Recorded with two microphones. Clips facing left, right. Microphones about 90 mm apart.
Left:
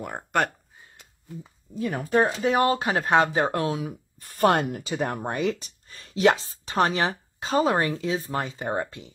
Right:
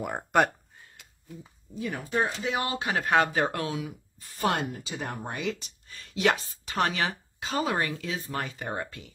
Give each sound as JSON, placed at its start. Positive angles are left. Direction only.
{"t": 0.0, "sound": "speech", "side_deg": -5}
{"t": 1.9, "sound": "speech", "side_deg": 50}
{"t": 4.2, "sound": "speech", "side_deg": 55}
{"t": 5.3, "sound": "speech", "side_deg": 40}